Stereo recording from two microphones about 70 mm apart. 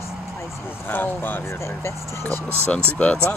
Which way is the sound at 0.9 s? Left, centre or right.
Left.